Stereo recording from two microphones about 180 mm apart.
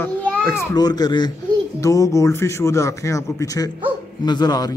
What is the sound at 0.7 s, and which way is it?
A man's voice, 20° left (ahead or behind).